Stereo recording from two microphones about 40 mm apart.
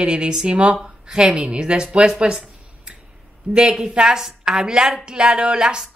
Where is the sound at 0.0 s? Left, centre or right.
Right.